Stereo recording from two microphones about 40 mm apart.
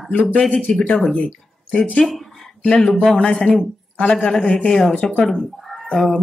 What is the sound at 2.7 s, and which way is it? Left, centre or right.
A woman's voice, left.